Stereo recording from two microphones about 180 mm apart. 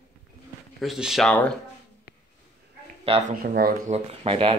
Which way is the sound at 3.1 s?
30° right (ahead or behind).